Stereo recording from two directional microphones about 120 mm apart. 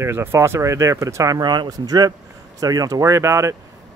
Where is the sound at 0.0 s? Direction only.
20° right (ahead or behind).